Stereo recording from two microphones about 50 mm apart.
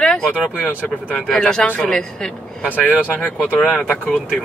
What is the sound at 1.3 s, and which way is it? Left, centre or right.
Speech, centre.